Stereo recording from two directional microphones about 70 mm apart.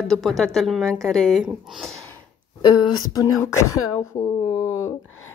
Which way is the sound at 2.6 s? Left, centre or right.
Left.